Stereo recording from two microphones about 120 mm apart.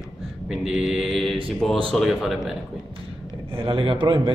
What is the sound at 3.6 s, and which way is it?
Speech, 50° right (ahead or behind).